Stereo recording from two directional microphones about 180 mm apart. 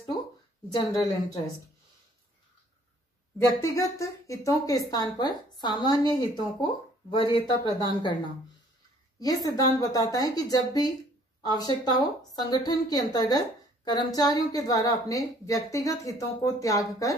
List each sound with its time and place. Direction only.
0.7 s speech: 20° left (ahead or behind)
3.6 s speech: 15° left (ahead or behind)
9.2 s speech: 20° left (ahead or behind)